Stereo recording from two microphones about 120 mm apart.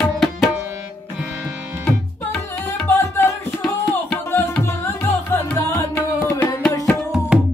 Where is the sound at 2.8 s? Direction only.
20° left (ahead or behind).